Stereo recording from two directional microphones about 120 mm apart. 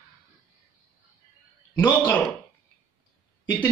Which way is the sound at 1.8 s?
15° left (ahead or behind).